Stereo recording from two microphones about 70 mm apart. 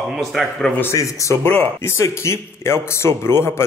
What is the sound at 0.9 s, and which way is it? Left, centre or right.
Speech, left.